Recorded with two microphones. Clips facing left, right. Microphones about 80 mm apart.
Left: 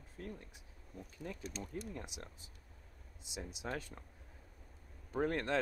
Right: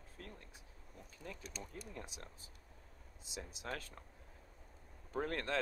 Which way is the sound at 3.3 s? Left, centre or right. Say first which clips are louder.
Left 3 dB; centre.